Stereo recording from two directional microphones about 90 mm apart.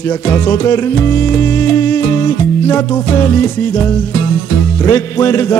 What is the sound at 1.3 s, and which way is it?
Music, 25° left (ahead or behind).